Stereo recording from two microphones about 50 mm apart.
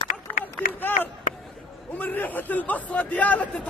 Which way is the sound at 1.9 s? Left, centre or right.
Left.